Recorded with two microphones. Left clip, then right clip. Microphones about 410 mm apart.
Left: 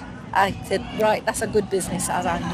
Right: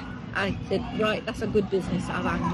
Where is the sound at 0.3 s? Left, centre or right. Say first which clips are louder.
Left 8 dB; centre.